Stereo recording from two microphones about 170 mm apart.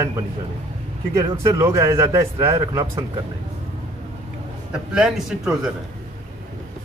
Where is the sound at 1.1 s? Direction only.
20° right (ahead or behind).